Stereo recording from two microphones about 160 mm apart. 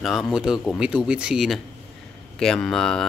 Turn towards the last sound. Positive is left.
turn(degrees=5)  # may be behind; listen again after turning